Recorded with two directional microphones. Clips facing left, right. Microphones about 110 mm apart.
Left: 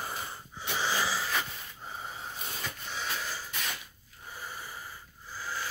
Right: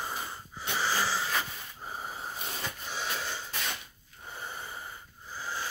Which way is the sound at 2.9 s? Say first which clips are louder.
Right 1 dB; 30° right (ahead or behind).